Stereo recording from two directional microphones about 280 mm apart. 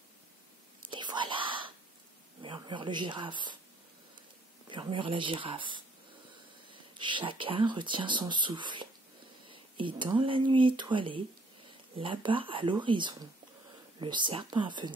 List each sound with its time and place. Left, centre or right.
0.8 s whispering: centre
2.4 s speech: centre
4.6 s speech: centre